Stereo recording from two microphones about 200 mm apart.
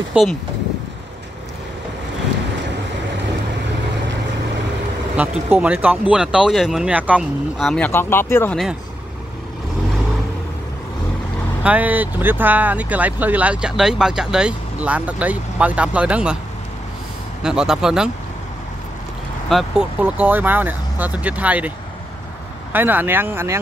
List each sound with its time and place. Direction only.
0.1 s speech: centre (ahead or behind)
5.1 s speech: 5° right (ahead or behind); by 8.5 s 10° left (ahead or behind)
11.6 s speech: 5° right (ahead or behind)
17.4 s speech: 5° right (ahead or behind)
19.5 s speech: 5° right (ahead or behind)